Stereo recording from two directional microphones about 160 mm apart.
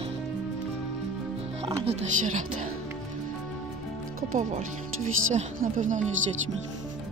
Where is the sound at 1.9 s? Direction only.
45° right (ahead or behind).